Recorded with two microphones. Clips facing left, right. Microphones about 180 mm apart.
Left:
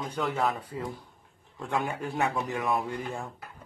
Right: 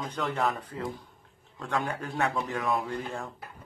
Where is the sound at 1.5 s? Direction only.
20° left (ahead or behind).